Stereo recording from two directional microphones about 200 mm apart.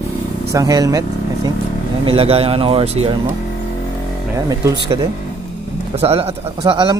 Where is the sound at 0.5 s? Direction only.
15° right (ahead or behind).